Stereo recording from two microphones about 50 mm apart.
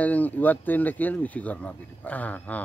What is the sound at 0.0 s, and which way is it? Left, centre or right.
A man's voice, left.